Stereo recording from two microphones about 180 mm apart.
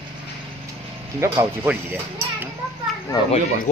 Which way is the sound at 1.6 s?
10° right (ahead or behind).